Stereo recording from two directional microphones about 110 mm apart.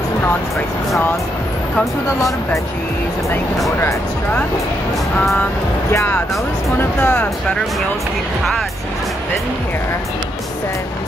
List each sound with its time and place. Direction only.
6.8 s speech: 20° left (ahead or behind)